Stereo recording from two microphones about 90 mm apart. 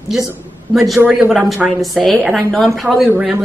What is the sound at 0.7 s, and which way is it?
A woman's voice, centre (ahead or behind).